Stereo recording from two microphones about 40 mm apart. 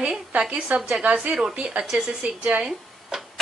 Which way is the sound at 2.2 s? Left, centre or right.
Right.